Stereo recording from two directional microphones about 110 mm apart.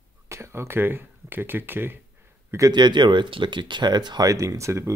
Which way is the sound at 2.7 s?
45° right (ahead or behind).